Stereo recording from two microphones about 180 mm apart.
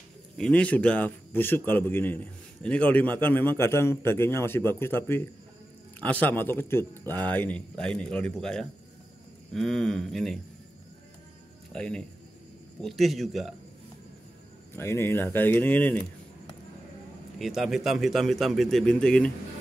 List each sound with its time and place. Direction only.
0.4 s a man's voice: 5° left (ahead or behind)
11.7 s a man's voice: 5° left (ahead or behind)
14.8 s a man's voice: 15° left (ahead or behind)
17.4 s a man's voice: centre (ahead or behind)